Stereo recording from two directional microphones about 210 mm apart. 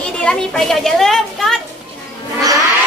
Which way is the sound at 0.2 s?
5° left (ahead or behind).